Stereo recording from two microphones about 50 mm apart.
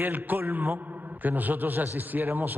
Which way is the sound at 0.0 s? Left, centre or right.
Right.